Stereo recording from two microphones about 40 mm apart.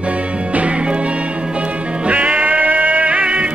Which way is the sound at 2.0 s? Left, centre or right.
Right.